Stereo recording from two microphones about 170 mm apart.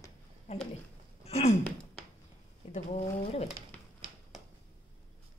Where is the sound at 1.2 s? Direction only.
40° left (ahead or behind).